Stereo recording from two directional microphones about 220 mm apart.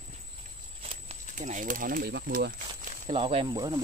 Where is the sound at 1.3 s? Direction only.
35° right (ahead or behind).